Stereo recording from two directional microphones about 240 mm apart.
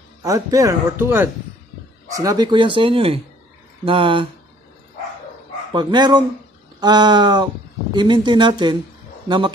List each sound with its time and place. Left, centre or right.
0.2 s speech: centre
5.7 s speech: centre